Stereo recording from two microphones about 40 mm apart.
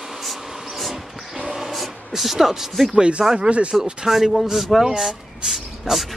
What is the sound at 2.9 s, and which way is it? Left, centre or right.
Speech, right.